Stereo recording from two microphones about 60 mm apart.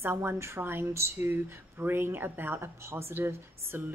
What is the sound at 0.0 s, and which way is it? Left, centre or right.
Speech, right.